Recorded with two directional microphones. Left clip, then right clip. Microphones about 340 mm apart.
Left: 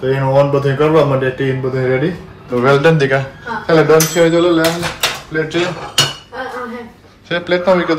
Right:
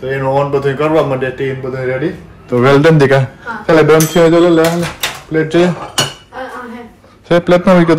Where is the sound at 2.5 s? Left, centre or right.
Right.